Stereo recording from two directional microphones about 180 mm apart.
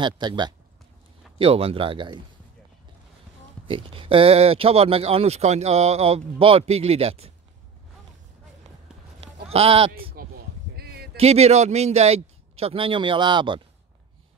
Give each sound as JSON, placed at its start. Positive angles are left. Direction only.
{"t": 0.0, "sound": "speech", "side_deg": -25}
{"t": 3.6, "sound": "speech", "side_deg": -30}
{"t": 9.2, "sound": "sheep", "side_deg": -35}
{"t": 10.2, "sound": "a sound", "side_deg": -55}
{"t": 11.1, "sound": "speech", "side_deg": -35}